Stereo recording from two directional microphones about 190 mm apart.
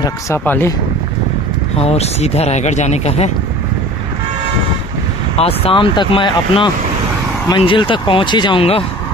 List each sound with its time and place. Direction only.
0.0 s speech: 15° left (ahead or behind)
1.8 s speech: 35° left (ahead or behind)
5.3 s speech: 30° left (ahead or behind)